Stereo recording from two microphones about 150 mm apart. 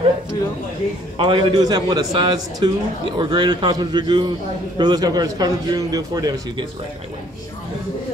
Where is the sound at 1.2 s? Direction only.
30° right (ahead or behind).